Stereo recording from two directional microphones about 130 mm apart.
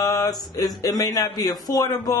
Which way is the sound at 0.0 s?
25° left (ahead or behind).